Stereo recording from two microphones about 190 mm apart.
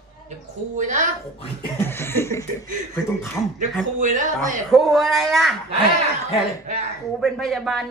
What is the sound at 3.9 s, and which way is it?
Speech, 40° right (ahead or behind).